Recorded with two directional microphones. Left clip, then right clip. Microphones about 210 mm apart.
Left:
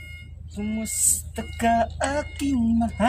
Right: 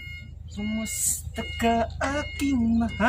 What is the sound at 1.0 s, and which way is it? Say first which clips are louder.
Speech: left 3 dB; 30° left (ahead or behind).